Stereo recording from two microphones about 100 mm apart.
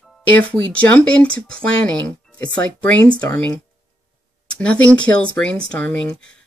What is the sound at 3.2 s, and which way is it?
Speech, 30° left (ahead or behind).